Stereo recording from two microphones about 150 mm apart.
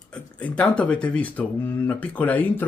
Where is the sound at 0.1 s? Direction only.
10° left (ahead or behind).